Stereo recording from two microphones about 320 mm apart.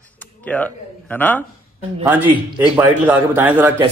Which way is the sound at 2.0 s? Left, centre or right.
Centre.